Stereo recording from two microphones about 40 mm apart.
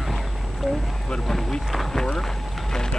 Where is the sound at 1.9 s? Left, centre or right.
Centre.